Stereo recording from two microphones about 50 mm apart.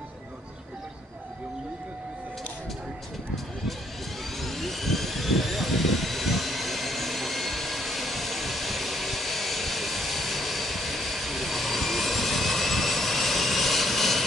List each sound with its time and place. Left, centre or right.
4.4 s vehicle: centre